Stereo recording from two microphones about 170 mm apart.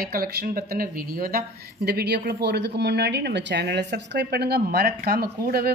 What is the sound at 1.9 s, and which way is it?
Speech, 70° right (ahead or behind).